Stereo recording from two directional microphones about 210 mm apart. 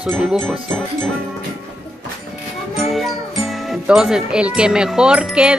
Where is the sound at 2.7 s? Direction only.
Centre (ahead or behind).